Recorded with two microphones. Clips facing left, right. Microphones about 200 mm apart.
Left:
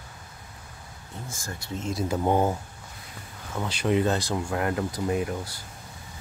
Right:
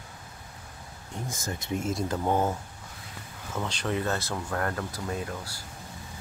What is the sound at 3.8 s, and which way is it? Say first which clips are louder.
Speech: left 7 dB; 20° left (ahead or behind).